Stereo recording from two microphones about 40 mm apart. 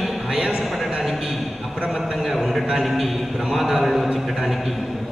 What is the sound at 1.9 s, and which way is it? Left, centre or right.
A man's voice, centre.